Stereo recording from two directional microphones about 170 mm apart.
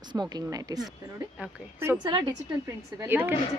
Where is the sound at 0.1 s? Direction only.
25° right (ahead or behind).